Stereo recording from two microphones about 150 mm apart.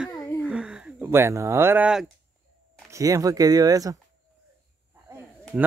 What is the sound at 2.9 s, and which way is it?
Speech, 20° right (ahead or behind).